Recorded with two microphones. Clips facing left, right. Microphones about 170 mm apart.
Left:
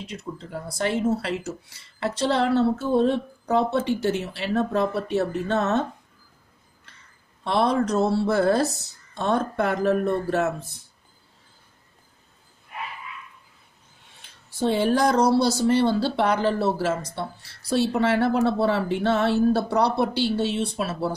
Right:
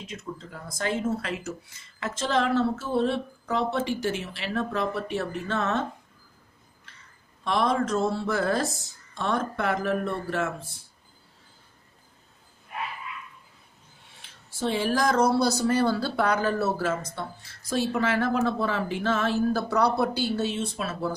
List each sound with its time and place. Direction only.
0.2 s speech: 35° left (ahead or behind)
7.4 s speech: 35° left (ahead or behind)
14.5 s speech: 35° left (ahead or behind)